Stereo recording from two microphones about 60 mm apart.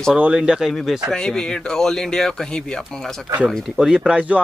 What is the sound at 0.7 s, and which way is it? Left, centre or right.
Speech, centre.